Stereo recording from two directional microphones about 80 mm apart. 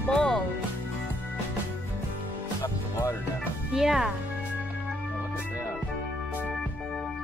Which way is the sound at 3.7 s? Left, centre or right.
Centre.